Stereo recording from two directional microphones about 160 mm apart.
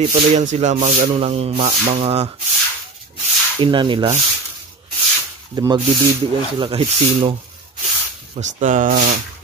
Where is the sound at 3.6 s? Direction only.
30° right (ahead or behind).